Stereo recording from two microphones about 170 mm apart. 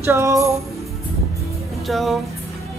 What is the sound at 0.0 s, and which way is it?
Music, 15° right (ahead or behind).